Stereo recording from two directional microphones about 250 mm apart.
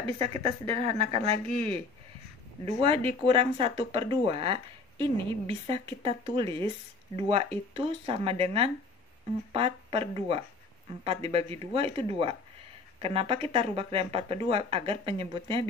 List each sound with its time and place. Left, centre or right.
0.0 s speech: right